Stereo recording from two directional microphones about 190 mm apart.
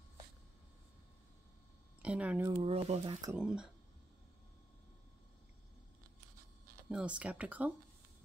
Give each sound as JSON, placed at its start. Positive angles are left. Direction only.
{"t": 2.0, "sound": "speech", "side_deg": -5}
{"t": 2.5, "sound": "speech", "side_deg": -30}
{"t": 3.3, "sound": "speech", "side_deg": -5}
{"t": 6.9, "sound": "speech", "side_deg": -5}